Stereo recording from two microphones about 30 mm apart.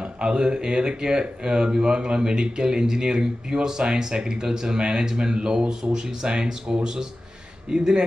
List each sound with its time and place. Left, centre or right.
0.0 s speech: right